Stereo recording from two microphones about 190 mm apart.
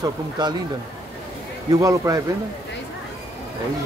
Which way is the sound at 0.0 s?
20° right (ahead or behind).